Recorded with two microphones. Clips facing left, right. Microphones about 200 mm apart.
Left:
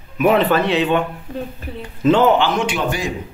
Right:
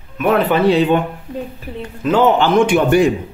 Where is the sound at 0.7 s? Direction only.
35° right (ahead or behind).